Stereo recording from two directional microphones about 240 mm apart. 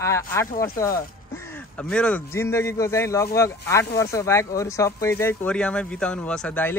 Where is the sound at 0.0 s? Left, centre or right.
Centre.